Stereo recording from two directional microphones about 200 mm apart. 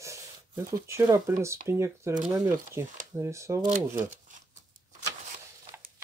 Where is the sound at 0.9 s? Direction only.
15° right (ahead or behind).